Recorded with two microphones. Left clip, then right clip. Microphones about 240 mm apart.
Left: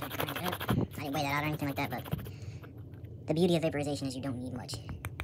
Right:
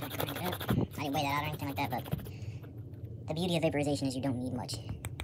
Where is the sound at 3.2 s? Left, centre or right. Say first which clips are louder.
Left 3 dB; centre.